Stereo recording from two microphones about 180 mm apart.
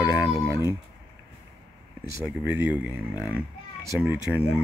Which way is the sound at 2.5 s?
10° right (ahead or behind).